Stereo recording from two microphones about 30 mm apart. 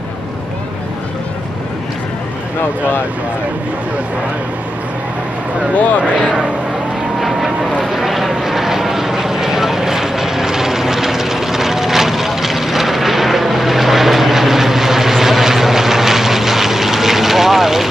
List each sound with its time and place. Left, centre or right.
6.2 s speech: right
7.2 s vehicle: centre